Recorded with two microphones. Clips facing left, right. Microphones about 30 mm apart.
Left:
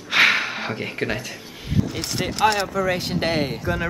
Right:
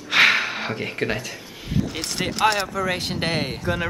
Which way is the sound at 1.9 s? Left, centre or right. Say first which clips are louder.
Even; centre.